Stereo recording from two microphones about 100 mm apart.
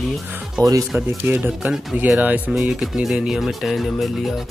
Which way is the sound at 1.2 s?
15° right (ahead or behind).